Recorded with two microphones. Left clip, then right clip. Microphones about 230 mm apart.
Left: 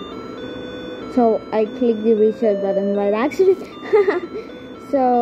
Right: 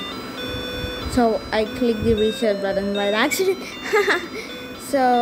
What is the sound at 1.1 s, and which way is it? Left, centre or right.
Speech, centre.